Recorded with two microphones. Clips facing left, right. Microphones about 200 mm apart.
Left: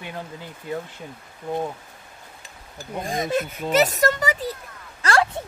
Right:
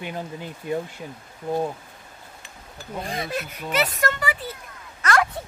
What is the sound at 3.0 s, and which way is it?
Speech, 45° left (ahead or behind).